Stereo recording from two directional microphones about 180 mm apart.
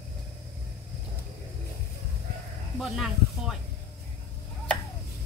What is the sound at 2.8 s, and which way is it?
Speech, centre (ahead or behind).